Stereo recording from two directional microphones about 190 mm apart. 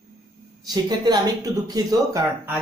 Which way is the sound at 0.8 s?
20° right (ahead or behind).